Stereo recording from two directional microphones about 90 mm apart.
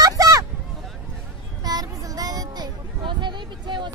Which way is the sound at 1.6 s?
45° right (ahead or behind).